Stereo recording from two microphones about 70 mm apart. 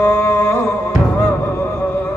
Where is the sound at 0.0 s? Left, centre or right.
Left.